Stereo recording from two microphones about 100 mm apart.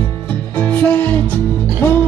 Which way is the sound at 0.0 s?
15° left (ahead or behind).